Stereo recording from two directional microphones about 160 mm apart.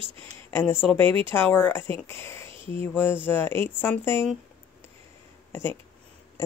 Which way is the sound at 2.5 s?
35° right (ahead or behind).